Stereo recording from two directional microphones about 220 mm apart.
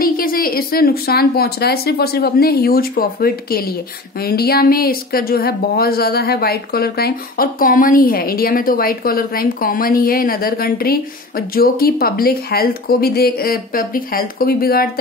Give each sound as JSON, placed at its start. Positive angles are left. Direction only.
{"t": 0.0, "sound": "speech", "side_deg": 40}